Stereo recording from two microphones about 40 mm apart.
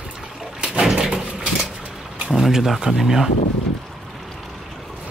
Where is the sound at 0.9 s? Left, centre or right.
Centre.